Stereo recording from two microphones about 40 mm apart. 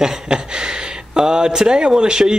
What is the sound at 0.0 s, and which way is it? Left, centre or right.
Speech, centre.